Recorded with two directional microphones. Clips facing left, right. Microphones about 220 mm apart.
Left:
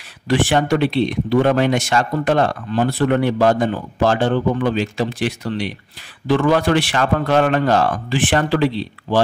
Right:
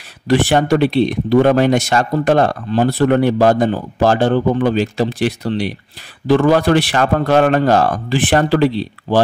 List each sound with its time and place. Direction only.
0.3 s speech: 40° right (ahead or behind)